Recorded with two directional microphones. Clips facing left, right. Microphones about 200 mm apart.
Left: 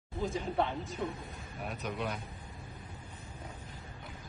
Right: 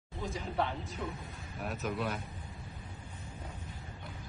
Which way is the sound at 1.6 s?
Centre (ahead or behind).